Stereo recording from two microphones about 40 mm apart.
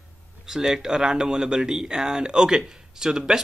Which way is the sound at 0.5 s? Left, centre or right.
Centre.